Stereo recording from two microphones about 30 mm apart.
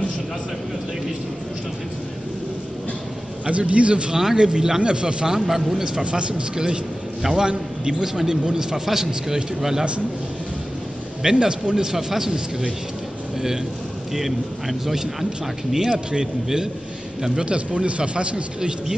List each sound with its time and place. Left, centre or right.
3.4 s a man's voice: right
4.1 s a man's voice: centre
4.4 s speech: right
5.3 s a man's voice: centre
5.9 s a man's voice: right
8.0 s a man's voice: centre
11.2 s a man's voice: right
14.1 s a man's voice: centre
17.5 s speech: right
18.6 s speech: right